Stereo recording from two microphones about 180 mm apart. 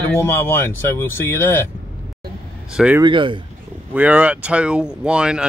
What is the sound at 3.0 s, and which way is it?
Speech, 25° right (ahead or behind).